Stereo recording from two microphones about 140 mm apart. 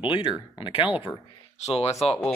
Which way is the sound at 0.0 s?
35° left (ahead or behind).